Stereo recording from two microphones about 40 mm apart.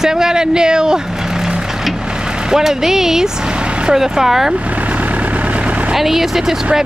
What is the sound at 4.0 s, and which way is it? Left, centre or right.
Speech, centre.